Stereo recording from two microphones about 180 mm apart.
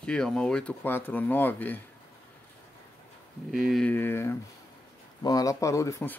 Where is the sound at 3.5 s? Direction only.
Centre (ahead or behind).